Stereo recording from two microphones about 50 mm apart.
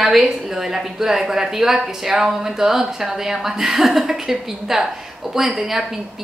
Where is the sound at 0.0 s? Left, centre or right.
Centre.